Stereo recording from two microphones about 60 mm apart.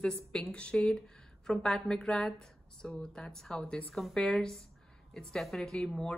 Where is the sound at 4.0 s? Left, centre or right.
Centre.